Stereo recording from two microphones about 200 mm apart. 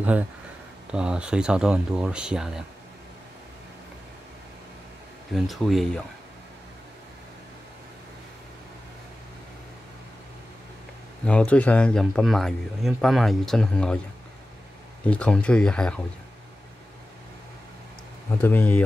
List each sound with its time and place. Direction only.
0.9 s speech: 5° right (ahead or behind)
5.3 s speech: centre (ahead or behind)
11.2 s speech: 5° left (ahead or behind)
15.0 s speech: 5° left (ahead or behind)
18.4 s speech: 10° left (ahead or behind)